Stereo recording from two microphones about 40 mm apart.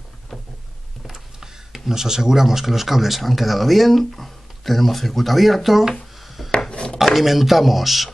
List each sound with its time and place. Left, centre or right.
1.4 s speech: centre
6.2 s wood: centre
6.7 s dishes: left
7.2 s speech: centre